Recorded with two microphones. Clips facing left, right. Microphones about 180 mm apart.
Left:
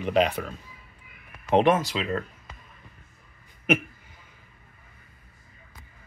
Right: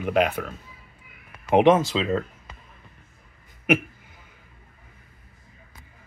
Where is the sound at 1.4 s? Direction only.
15° right (ahead or behind).